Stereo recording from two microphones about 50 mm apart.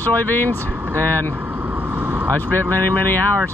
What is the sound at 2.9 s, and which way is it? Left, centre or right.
Speech, left.